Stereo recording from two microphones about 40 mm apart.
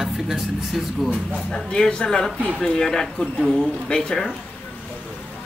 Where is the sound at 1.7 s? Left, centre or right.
Centre.